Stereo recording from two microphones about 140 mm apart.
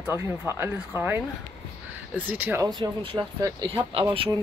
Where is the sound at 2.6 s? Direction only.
30° right (ahead or behind).